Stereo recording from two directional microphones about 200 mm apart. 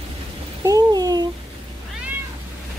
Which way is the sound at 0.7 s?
20° right (ahead or behind).